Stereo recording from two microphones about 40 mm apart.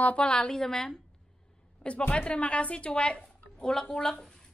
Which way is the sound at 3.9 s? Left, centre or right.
Centre.